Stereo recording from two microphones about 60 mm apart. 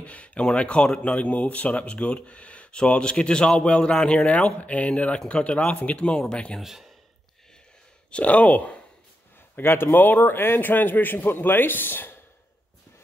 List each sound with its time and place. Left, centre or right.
0.0 s speech: left
6.6 s speech: centre
8.1 s speech: left
9.6 s a man's voice: left